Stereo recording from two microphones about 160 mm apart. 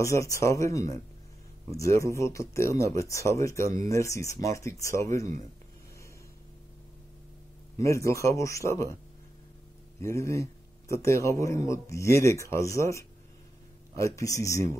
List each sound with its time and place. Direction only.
0.0 s speech: 20° left (ahead or behind)
7.7 s speech: 20° left (ahead or behind)
9.9 s speech: 20° left (ahead or behind)